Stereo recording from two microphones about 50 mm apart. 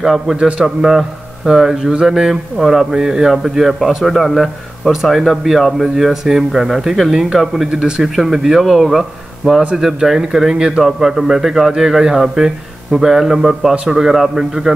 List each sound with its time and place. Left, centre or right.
0.0 s a man's voice: centre
0.4 s a man's voice: right
0.7 s a man's voice: centre